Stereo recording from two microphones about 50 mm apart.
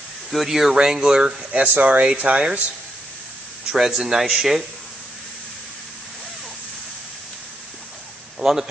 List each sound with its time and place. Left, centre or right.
0.3 s speech: centre
1.6 s speech: right
3.7 s speech: centre
8.4 s a sound: centre